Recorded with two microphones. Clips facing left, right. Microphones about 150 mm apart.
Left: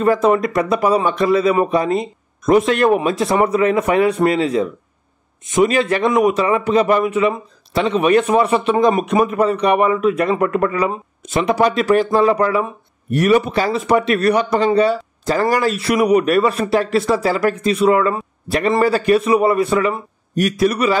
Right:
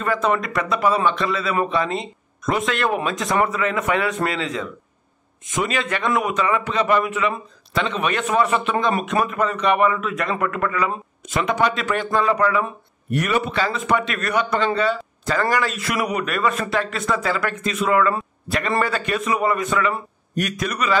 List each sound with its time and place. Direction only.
0.0 s speech: 35° left (ahead or behind)